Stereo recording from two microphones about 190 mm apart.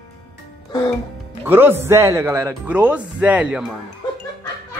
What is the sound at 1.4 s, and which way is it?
A man's voice, 10° right (ahead or behind).